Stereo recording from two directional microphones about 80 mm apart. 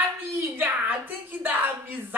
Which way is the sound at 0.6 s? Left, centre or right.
Right.